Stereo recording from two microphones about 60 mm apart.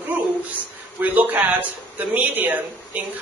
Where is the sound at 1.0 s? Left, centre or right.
Right.